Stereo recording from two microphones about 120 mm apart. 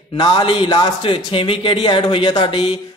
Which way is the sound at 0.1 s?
40° left (ahead or behind).